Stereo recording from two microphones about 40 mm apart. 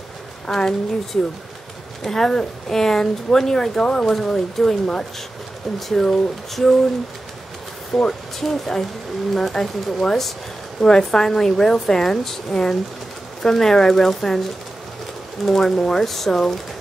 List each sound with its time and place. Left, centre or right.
0.5 s speech: centre
4.0 s speech: centre
5.8 s speech: centre
7.9 s speech: centre
15.4 s speech: centre